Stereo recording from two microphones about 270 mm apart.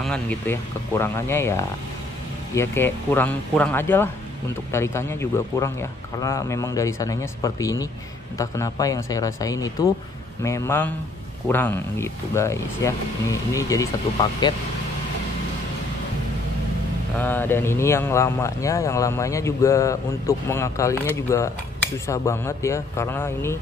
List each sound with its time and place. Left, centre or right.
0.0 s speech: centre
17.2 s speech: centre